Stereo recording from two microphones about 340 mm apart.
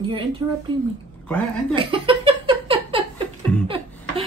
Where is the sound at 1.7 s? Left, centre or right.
Centre.